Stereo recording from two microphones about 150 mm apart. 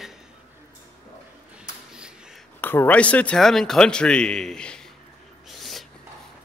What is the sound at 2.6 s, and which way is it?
A man's voice, 15° left (ahead or behind).